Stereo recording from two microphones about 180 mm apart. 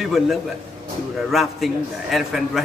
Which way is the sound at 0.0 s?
Centre (ahead or behind).